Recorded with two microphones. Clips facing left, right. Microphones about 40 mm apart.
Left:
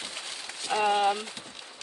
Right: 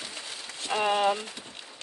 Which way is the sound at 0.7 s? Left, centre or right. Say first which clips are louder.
Even; centre.